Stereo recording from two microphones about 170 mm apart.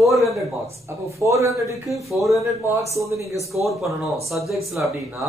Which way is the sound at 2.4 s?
15° right (ahead or behind).